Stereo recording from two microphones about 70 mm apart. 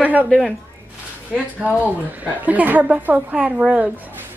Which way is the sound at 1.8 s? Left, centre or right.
Right.